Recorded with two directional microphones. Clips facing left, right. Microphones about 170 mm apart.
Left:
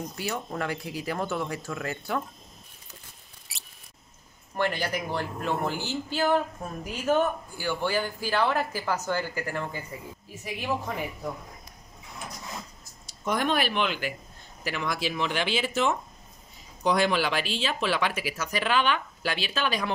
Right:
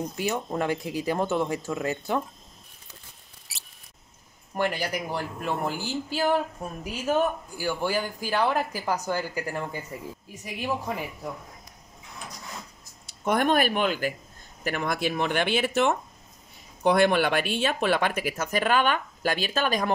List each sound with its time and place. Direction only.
0.2 s speech: 20° right (ahead or behind)
3.5 s mouse: centre (ahead or behind)
4.6 s speech: 10° right (ahead or behind)
13.0 s speech: 55° right (ahead or behind)